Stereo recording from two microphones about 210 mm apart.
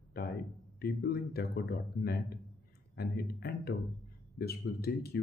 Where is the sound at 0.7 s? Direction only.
45° left (ahead or behind).